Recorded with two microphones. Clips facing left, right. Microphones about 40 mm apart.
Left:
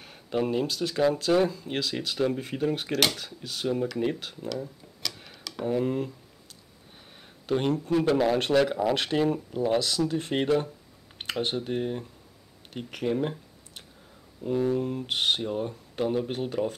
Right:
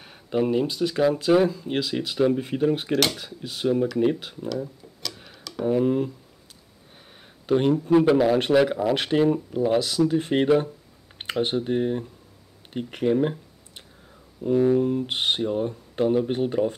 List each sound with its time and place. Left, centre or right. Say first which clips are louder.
0.0 s a sound: right 4 dB; centre
0.7 s speech: right 3 dB; centre
4.5 s tick-tock: right 4 dB; centre
7.4 s speech: right 5 dB; centre
15.0 s speech: right 2 dB; centre
16.3 s speech: right 6 dB; centre